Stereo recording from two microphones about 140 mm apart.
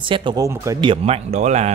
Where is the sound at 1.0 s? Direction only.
50° right (ahead or behind).